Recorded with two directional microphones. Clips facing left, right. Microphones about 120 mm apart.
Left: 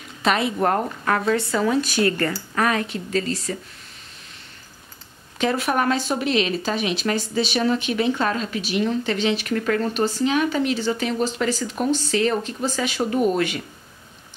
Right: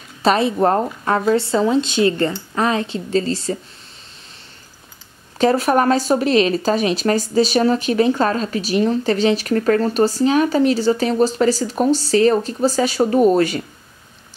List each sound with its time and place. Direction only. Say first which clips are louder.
0.2 s speech: right 5 dB; 35° right (ahead or behind)
5.4 s speech: right 6 dB; 40° right (ahead or behind)